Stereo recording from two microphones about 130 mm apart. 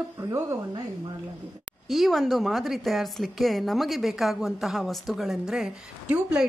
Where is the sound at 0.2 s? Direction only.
20° right (ahead or behind).